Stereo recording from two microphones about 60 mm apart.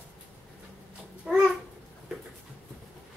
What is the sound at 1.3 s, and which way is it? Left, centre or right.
Babbling, centre.